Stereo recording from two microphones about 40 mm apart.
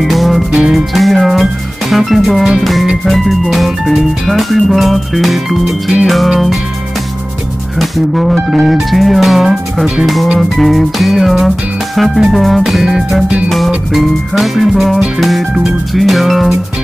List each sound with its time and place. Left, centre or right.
0.0 s music: centre
7.8 s music: centre
13.9 s music: centre